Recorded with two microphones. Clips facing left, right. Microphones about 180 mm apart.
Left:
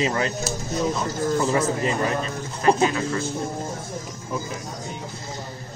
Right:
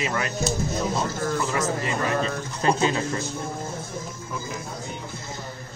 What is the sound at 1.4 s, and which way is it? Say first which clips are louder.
Speech: left 5 dB; 30° left (ahead or behind).